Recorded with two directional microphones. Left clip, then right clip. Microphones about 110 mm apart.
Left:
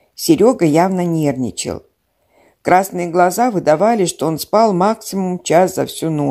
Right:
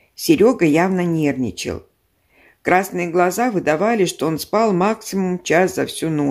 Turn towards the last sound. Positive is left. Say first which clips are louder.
# left 2 dB
turn(degrees=40)  # may be behind; listen again after turning